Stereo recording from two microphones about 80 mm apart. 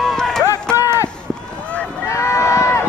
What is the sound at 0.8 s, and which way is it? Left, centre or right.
Run, left.